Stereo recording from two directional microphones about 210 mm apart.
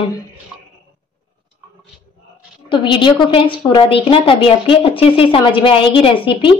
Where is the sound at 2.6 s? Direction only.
25° left (ahead or behind).